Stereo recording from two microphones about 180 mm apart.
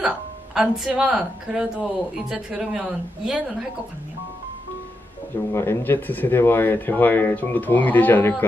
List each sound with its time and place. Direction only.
0.6 s speech: 5° right (ahead or behind)
5.5 s speech: 15° left (ahead or behind)